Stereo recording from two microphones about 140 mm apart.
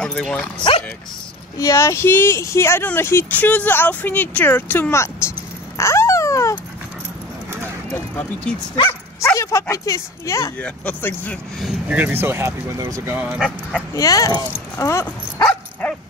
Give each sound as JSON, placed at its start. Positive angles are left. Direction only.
{"t": 0.0, "sound": "speech", "side_deg": 5}
{"t": 1.6, "sound": "speech", "side_deg": 20}
{"t": 5.8, "sound": "dog", "side_deg": 20}
{"t": 8.7, "sound": "speech", "side_deg": 20}
{"t": 10.6, "sound": "speech", "side_deg": 10}
{"t": 11.5, "sound": "speech", "side_deg": 0}
{"t": 12.0, "sound": "speech", "side_deg": -15}
{"t": 13.4, "sound": "speech", "side_deg": 5}
{"t": 13.9, "sound": "speech", "side_deg": 25}
{"t": 15.8, "sound": "dog", "side_deg": 10}